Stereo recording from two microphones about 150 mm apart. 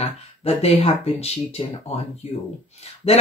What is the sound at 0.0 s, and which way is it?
Speech, 45° left (ahead or behind).